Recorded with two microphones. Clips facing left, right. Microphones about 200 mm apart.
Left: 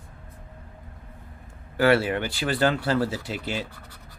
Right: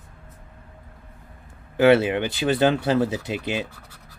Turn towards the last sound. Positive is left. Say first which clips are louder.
# right 4 dB
turn(degrees=-15)  # may be behind; listen again after turning